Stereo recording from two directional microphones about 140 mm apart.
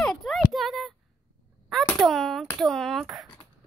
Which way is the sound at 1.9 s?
Centre (ahead or behind).